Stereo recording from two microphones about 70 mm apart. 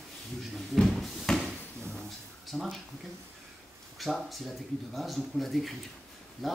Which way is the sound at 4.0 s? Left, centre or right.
Centre.